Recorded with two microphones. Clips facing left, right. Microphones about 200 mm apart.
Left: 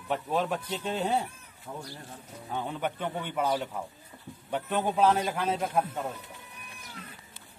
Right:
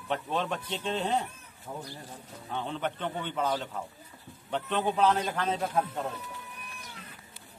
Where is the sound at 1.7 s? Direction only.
20° right (ahead or behind).